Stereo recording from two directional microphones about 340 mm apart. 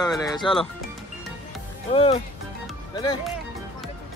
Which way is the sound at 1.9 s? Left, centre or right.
Centre.